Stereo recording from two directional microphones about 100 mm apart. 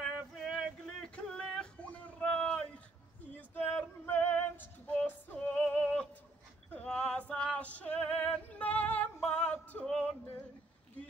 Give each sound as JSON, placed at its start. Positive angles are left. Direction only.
{"t": 0.0, "sound": "male singing", "side_deg": 5}
{"t": 3.3, "sound": "female singing", "side_deg": 15}
{"t": 6.7, "sound": "music", "side_deg": 15}